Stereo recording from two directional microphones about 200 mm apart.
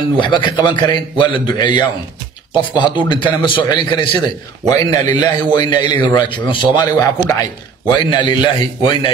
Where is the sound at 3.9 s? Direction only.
20° left (ahead or behind).